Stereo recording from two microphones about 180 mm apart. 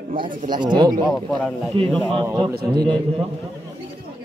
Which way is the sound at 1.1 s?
Centre (ahead or behind).